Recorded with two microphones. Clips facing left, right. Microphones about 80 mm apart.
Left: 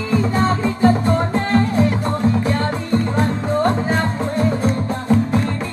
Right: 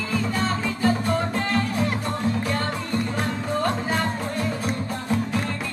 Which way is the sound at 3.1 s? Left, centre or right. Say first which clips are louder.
Left 7 dB; left.